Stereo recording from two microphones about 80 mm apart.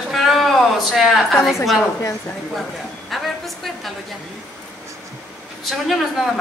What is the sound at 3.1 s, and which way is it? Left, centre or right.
Speech, centre.